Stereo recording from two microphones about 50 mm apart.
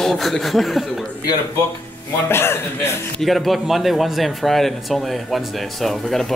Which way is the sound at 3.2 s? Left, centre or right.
Centre.